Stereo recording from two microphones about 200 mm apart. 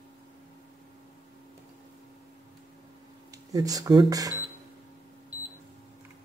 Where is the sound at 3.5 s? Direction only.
15° right (ahead or behind).